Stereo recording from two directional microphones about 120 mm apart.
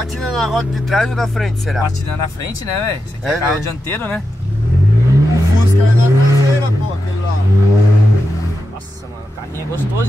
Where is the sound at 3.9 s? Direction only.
20° left (ahead or behind).